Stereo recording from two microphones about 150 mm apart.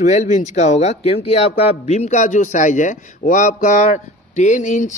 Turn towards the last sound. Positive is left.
turn(degrees=55)  # may be behind; listen again after turning